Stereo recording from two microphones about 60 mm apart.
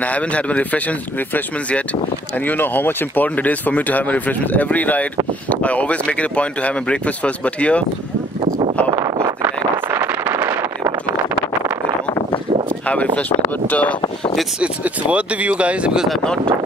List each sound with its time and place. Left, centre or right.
0.0 s speech: left
2.4 s speech: left
9.9 s a sound: right
12.8 s speech: left
14.6 s speech: right